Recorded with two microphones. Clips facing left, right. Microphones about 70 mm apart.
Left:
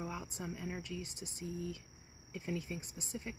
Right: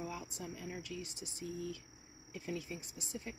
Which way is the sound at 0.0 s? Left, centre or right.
Left.